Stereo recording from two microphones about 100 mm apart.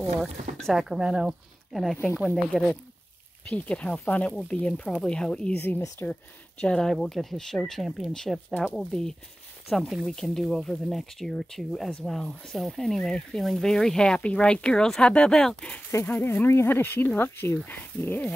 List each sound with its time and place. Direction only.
0.6 s speech: centre (ahead or behind)
2.5 s speech: 5° left (ahead or behind)
6.6 s speech: 5° left (ahead or behind)